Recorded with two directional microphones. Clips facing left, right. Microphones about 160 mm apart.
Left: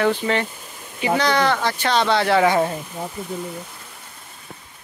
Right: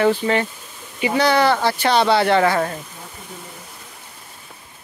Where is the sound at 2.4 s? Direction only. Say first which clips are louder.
Left 1 dB; 15° left (ahead or behind).